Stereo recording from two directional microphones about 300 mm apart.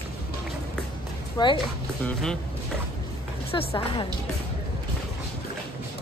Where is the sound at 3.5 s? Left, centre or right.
Centre.